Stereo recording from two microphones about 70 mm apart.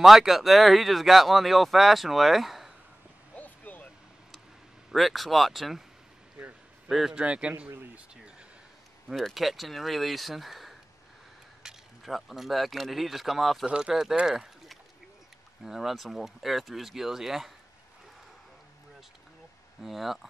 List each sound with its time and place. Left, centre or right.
0.0 s speech: centre
3.3 s a sound: left
4.9 s speech: centre
6.9 s speech: centre
7.2 s speech: centre
9.0 s speech: centre
13.7 s speech: centre
14.1 s a sound: centre
15.6 s speech: centre
19.8 s speech: centre